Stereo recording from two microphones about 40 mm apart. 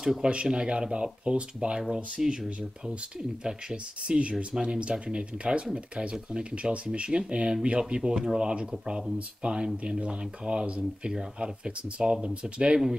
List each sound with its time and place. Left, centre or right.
0.2 s speech: right
4.1 s speech: right